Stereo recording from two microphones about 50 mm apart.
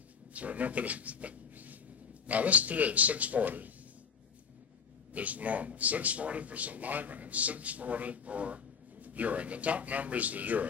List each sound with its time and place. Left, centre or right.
0.3 s a man's voice: right
5.1 s a man's voice: right